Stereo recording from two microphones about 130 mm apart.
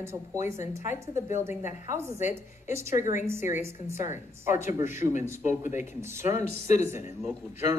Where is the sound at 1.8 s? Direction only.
20° right (ahead or behind).